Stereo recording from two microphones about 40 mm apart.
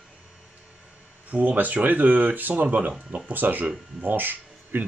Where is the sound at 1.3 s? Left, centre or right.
Right.